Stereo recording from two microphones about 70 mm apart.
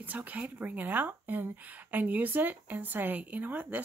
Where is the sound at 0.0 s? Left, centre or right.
Right.